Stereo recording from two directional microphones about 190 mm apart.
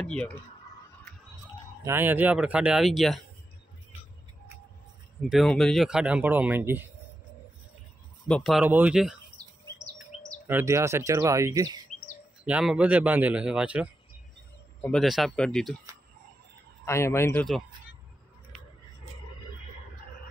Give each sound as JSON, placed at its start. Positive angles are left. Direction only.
{"t": 0.0, "sound": "speech", "side_deg": 5}
{"t": 1.9, "sound": "speech", "side_deg": -10}
{"t": 5.3, "sound": "speech", "side_deg": 0}
{"t": 8.3, "sound": "speech", "side_deg": 0}
{"t": 8.6, "sound": "speech", "side_deg": -10}
{"t": 10.3, "sound": "speech", "side_deg": -15}
{"t": 12.4, "sound": "speech", "side_deg": -5}
{"t": 16.8, "sound": "speech", "side_deg": 15}
{"t": 18.5, "sound": "a sound", "side_deg": 0}